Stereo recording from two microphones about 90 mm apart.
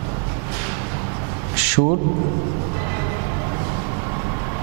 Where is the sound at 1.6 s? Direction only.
15° right (ahead or behind).